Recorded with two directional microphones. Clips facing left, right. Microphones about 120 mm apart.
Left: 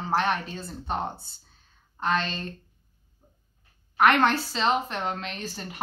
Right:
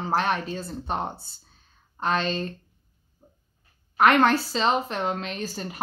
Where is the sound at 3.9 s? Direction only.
35° right (ahead or behind).